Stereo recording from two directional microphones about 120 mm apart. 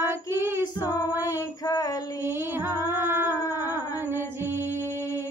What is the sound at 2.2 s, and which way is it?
Music, 20° right (ahead or behind).